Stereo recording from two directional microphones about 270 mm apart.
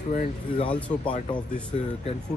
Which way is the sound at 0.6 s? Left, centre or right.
Centre.